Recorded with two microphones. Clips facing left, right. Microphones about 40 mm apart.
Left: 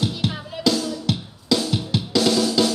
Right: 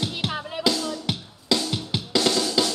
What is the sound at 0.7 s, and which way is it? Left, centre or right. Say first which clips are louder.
Drum: left 4 dB; centre.